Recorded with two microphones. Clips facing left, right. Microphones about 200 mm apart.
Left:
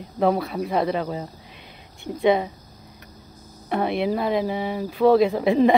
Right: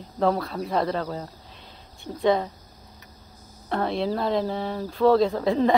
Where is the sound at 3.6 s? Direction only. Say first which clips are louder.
Left 3 dB; 15° left (ahead or behind).